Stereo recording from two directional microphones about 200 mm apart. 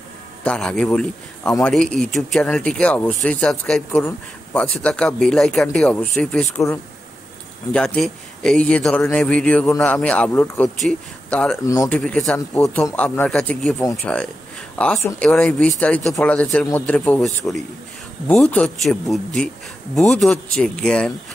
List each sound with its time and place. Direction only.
0.4 s speech: 5° left (ahead or behind)
11.6 s speech: 15° left (ahead or behind)
12.0 s speech: 5° left (ahead or behind)
18.3 s speech: 5° left (ahead or behind)